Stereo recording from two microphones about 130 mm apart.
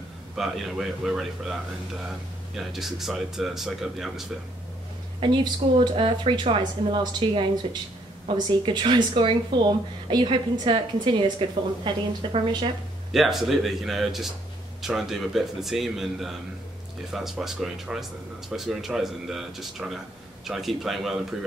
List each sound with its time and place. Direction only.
0.4 s speech: centre (ahead or behind)
5.2 s a woman's voice: 35° right (ahead or behind)
8.5 s a woman's voice: 35° right (ahead or behind)
13.1 s speech: centre (ahead or behind)